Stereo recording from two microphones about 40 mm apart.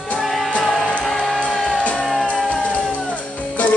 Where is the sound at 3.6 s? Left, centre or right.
Left.